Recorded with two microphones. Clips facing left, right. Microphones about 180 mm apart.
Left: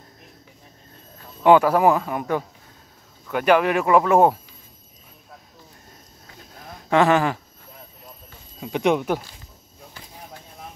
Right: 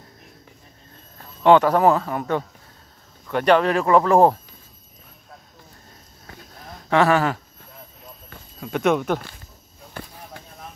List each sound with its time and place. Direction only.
1.4 s speech: 10° left (ahead or behind)
6.9 s speech: 15° left (ahead or behind)
8.5 s speech: 15° left (ahead or behind)
9.9 s basketball bounce: 55° right (ahead or behind)